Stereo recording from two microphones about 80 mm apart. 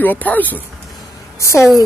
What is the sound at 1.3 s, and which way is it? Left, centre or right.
Speech, left.